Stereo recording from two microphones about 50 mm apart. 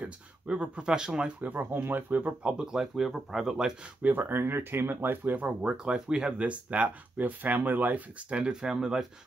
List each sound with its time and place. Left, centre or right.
0.0 s speech: right
1.5 s speech: right
2.4 s speech: centre
4.0 s speech: right
4.4 s speech: right
5.3 s speech: right
5.7 s speech: centre